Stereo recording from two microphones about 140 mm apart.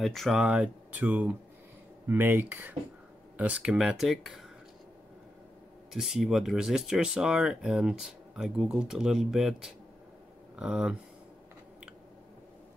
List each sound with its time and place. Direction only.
0.0 s speech: centre (ahead or behind)
5.9 s speech: centre (ahead or behind)